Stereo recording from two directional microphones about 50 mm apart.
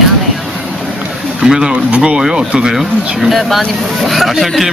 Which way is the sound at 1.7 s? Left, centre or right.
Right.